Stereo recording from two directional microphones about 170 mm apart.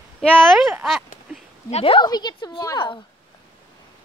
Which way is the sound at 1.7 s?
35° left (ahead or behind).